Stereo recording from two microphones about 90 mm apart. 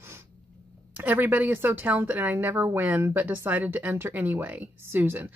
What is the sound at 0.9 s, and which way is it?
Speech, 20° right (ahead or behind).